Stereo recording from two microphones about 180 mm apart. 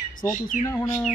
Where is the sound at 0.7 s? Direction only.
5° left (ahead or behind).